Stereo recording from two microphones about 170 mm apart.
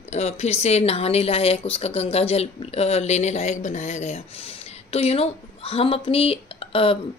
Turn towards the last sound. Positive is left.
turn(degrees=35)  # may be behind; listen again after turning